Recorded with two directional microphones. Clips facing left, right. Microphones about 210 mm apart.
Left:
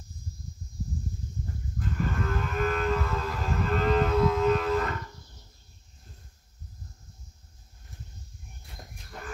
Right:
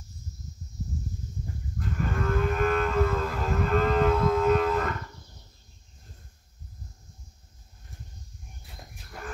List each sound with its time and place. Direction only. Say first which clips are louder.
2.0 s livestock: right 4 dB; 50° right (ahead or behind)